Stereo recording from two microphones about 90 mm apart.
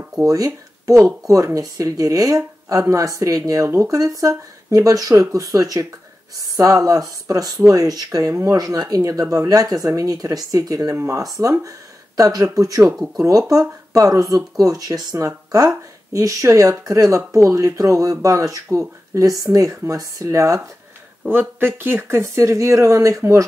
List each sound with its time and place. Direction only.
0.2 s speech: 40° right (ahead or behind)
8.5 s speech: 45° right (ahead or behind)
21.3 s speech: 25° right (ahead or behind)